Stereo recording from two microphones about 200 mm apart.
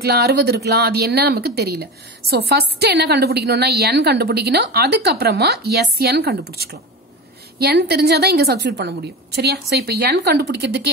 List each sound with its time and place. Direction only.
0.0 s a woman's voice: 55° right (ahead or behind)